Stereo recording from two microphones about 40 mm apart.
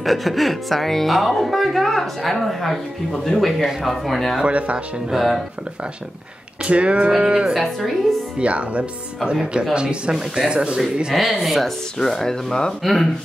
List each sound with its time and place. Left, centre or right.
0.0 s speech: centre
4.5 s speech: right
6.6 s speech: right
7.5 s speech: centre
8.4 s speech: right; by 10.5 s centre
10.5 s speech: right
11.1 s speech: centre
12.0 s speech: centre
12.8 s speech: centre